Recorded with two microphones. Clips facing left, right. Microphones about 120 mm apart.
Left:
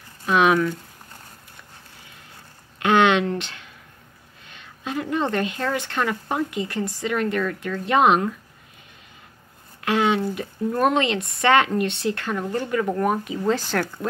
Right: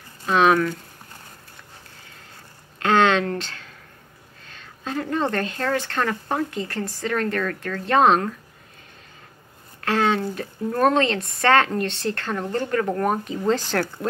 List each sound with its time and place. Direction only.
0.3 s speech: 15° left (ahead or behind)
2.8 s a sound: 15° left (ahead or behind)
5.3 s speech: 15° left (ahead or behind)
9.8 s speech: 15° left (ahead or behind)